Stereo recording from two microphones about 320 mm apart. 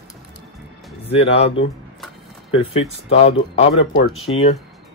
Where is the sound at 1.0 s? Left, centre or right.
Centre.